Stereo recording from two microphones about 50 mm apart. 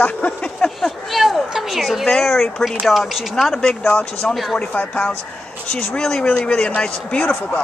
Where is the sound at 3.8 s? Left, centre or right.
Left.